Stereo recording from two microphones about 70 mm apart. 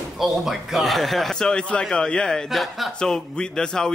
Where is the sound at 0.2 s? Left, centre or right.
Centre.